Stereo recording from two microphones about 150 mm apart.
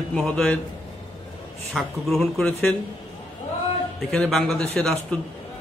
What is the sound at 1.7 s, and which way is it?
Speech, centre (ahead or behind).